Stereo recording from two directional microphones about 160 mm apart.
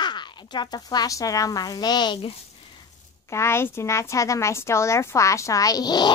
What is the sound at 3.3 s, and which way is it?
A woman's voice, 15° left (ahead or behind).